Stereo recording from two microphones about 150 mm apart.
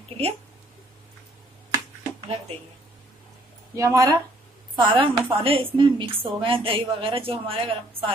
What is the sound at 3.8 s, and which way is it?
Speech, 20° right (ahead or behind).